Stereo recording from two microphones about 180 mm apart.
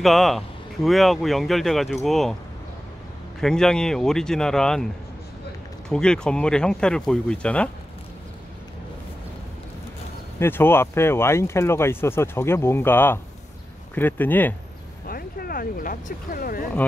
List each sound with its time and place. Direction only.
0.0 s speech: centre (ahead or behind)
3.3 s speech: 5° left (ahead or behind)
5.9 s speech: 5° left (ahead or behind)
10.4 s speech: 10° left (ahead or behind)
15.0 s speech: 55° left (ahead or behind)